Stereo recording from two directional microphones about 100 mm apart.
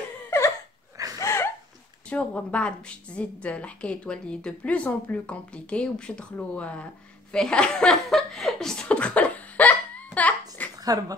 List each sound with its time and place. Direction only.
1.2 s a sound: 25° left (ahead or behind)
2.0 s a woman's voice: 10° left (ahead or behind)
7.3 s chuckle: 10° left (ahead or behind)
10.8 s speech: 40° right (ahead or behind)